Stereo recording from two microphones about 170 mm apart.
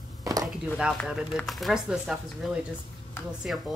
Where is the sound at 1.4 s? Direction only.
Centre (ahead or behind).